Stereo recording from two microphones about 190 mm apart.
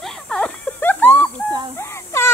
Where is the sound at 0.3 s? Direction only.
5° left (ahead or behind).